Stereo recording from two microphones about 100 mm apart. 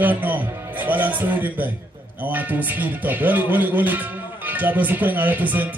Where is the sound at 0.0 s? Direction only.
15° right (ahead or behind).